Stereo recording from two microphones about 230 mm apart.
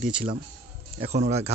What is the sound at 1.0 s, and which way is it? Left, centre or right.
Speech, right.